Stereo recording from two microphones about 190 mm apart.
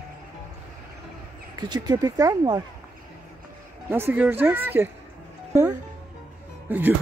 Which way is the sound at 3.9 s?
10° right (ahead or behind).